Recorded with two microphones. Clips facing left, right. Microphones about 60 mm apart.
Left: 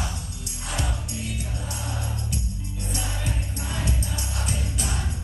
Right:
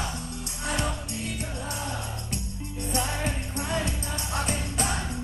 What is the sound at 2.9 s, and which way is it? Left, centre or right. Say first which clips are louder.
Music: right 4 dB; right.